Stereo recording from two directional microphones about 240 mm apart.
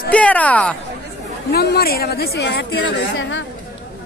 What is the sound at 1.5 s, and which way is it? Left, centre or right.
Speech, left.